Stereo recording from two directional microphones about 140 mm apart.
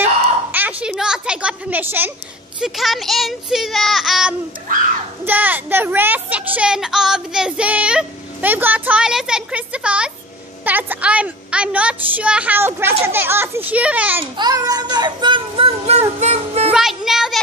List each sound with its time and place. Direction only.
0.0 s a sound: 15° right (ahead or behind)
2.6 s child singing: centre (ahead or behind)
5.2 s speech: 10° right (ahead or behind)
14.2 s speech: 30° right (ahead or behind)
16.2 s speech: 50° right (ahead or behind)
16.7 s child singing: 5° right (ahead or behind)